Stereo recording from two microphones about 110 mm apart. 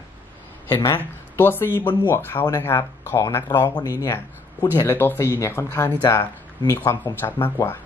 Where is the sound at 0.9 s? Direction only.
20° left (ahead or behind).